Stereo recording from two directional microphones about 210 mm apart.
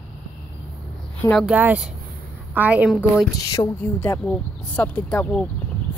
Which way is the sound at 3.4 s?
15° left (ahead or behind).